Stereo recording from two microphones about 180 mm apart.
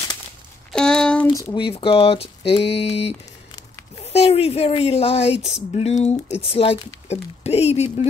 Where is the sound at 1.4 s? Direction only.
25° left (ahead or behind).